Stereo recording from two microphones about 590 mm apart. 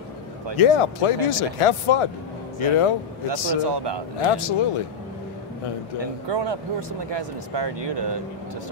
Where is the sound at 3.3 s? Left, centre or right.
Right.